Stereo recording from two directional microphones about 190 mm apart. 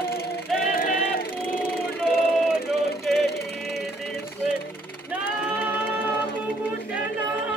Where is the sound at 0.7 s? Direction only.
50° left (ahead or behind).